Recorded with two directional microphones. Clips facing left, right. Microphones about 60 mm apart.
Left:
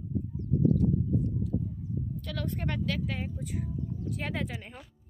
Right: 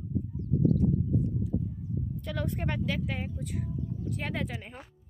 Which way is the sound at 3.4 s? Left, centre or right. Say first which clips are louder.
Even; centre.